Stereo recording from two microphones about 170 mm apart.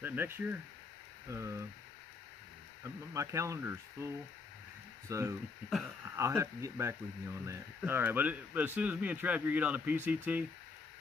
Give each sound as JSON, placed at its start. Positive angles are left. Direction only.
{"t": 0.0, "sound": "speech", "side_deg": -10}
{"t": 2.8, "sound": "speech", "side_deg": -15}